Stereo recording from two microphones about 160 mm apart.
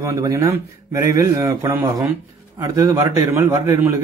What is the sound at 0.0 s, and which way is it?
A man's voice, 20° right (ahead or behind).